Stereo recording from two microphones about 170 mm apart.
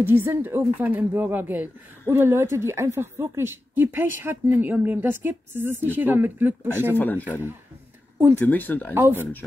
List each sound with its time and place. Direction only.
0.0 s speech: 10° right (ahead or behind)
7.0 s speech: 10° left (ahead or behind)
8.4 s speech: 10° left (ahead or behind)
8.9 s speech: 15° right (ahead or behind)